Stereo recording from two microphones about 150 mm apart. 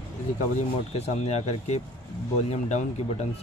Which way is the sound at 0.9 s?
45° left (ahead or behind).